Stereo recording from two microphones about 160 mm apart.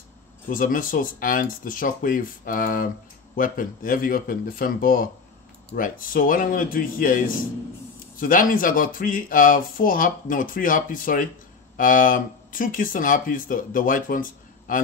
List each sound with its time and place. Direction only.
0.5 s speech: 60° left (ahead or behind)